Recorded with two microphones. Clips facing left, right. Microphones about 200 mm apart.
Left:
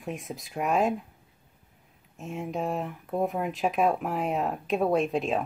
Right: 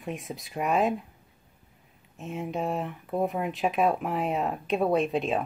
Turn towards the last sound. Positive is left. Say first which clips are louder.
# even
turn(degrees=0)  # may be behind; listen again after turning